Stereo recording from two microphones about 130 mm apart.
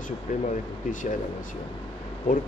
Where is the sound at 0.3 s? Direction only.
75° left (ahead or behind).